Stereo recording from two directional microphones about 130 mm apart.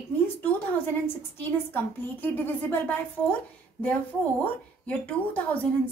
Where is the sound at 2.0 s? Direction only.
15° left (ahead or behind).